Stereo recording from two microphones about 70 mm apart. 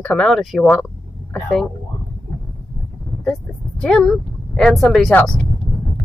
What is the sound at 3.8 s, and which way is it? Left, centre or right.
Speech, centre.